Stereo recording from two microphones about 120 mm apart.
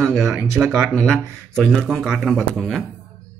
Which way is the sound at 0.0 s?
Centre (ahead or behind).